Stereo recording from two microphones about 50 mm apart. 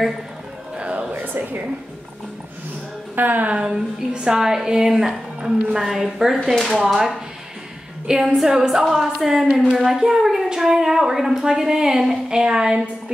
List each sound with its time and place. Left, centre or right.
0.9 s a sound: right
3.2 s speech: right
3.6 s a woman's voice: centre
8.4 s a woman's voice: centre